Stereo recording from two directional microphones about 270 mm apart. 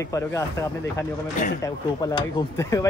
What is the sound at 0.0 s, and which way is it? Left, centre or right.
Speech, centre.